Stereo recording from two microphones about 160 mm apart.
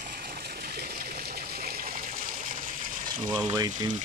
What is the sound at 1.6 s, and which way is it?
Water, 65° right (ahead or behind).